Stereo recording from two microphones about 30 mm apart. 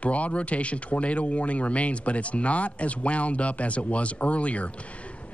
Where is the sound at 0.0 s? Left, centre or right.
Left.